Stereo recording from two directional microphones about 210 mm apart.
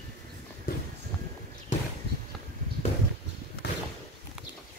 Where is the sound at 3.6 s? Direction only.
55° left (ahead or behind).